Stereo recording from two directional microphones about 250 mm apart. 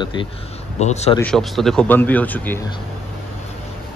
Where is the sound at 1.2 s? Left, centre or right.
Centre.